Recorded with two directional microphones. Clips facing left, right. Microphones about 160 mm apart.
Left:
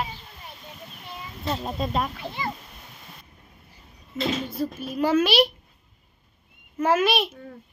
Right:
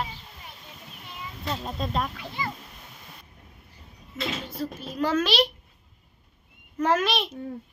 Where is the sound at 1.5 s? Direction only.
15° left (ahead or behind).